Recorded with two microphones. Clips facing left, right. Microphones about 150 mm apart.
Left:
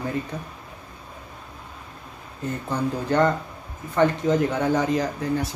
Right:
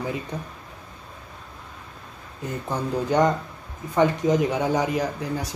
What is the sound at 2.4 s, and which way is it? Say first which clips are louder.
Speech: left 2 dB; 15° right (ahead or behind).